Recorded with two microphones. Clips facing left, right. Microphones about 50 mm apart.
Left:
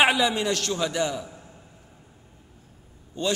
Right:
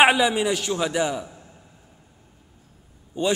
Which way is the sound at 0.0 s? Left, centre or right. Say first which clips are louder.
Right 3 dB; centre.